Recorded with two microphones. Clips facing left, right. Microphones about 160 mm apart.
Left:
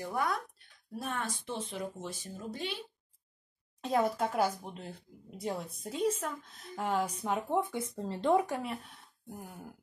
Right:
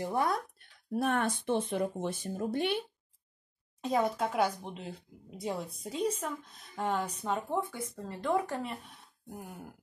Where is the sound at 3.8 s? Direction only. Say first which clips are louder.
Even; centre (ahead or behind).